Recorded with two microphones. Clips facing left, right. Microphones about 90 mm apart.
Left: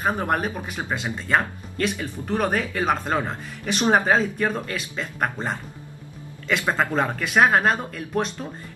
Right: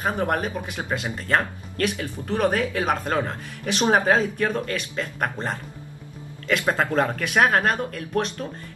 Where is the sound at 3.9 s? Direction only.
5° left (ahead or behind).